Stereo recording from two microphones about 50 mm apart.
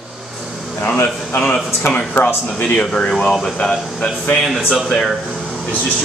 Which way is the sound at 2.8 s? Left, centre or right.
Centre.